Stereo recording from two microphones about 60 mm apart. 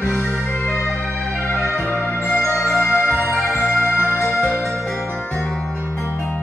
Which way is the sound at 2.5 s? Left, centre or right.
Left.